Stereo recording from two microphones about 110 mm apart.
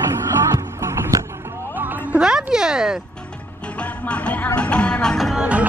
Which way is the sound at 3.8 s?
10° left (ahead or behind).